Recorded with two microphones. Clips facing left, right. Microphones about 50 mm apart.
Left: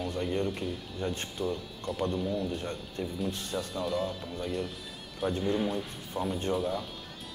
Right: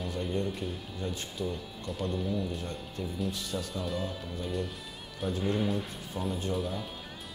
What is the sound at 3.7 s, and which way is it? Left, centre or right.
Speech, centre.